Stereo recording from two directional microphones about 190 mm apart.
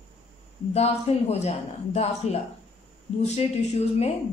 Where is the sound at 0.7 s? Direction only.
35° left (ahead or behind).